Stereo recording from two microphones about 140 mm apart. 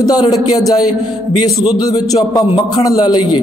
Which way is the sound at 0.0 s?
30° left (ahead or behind).